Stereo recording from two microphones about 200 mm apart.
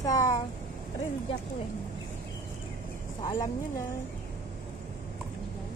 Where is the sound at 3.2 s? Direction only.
20° left (ahead or behind).